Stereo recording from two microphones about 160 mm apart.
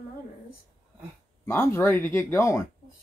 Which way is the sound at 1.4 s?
15° left (ahead or behind).